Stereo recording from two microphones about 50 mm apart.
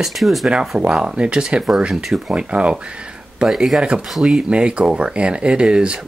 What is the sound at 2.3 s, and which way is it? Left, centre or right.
Speech, right.